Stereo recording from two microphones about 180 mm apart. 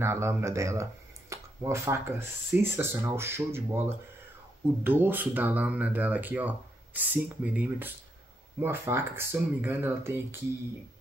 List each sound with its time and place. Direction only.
0.0 s speech: 15° right (ahead or behind)